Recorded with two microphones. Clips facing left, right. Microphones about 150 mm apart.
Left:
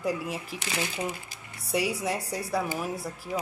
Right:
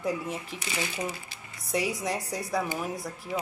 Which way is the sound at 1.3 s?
30° left (ahead or behind).